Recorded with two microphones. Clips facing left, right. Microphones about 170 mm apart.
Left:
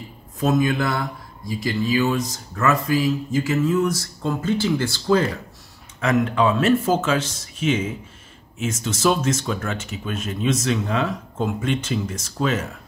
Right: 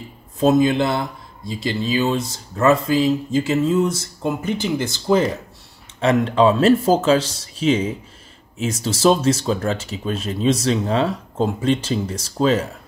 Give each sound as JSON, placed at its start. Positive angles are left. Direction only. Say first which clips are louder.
{"t": 0.4, "sound": "speech", "louder": "right 4 dB", "side_deg": -25}
{"t": 5.9, "sound": "speech", "louder": "right 3 dB", "side_deg": -30}